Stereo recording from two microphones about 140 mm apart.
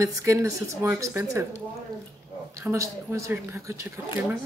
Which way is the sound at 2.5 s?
20° right (ahead or behind).